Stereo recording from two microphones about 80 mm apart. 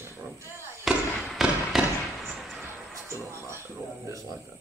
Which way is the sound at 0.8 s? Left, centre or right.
Centre.